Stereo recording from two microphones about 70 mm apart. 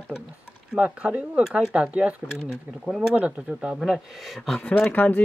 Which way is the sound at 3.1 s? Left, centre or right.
Centre.